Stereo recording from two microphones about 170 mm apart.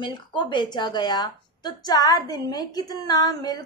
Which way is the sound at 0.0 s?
30° left (ahead or behind).